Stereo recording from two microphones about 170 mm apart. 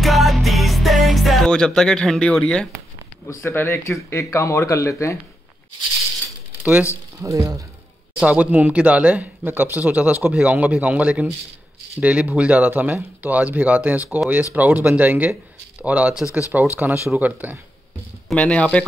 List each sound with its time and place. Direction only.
0.0 s music: centre (ahead or behind)
3.3 s speech: 15° left (ahead or behind)
6.6 s speech: 10° right (ahead or behind)
8.2 s speech: 10° right (ahead or behind)
18.3 s speech: 5° left (ahead or behind)